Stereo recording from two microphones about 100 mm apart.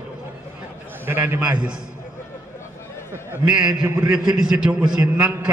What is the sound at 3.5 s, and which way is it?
A man's voice, 10° right (ahead or behind).